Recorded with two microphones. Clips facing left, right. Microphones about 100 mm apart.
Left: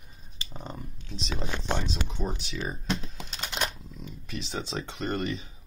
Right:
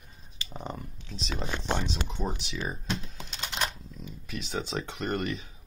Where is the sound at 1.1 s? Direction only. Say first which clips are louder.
Even; centre (ahead or behind).